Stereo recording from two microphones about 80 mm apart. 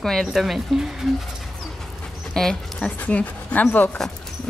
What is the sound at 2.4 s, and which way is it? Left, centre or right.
Speech, centre.